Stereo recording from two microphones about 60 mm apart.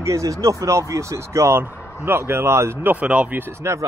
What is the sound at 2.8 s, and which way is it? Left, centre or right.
Speech, right.